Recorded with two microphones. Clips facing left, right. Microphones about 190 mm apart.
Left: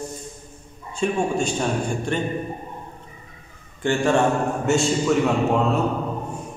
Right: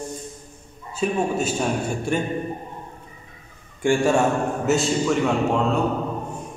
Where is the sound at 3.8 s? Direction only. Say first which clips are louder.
Right 1 dB; 10° right (ahead or behind).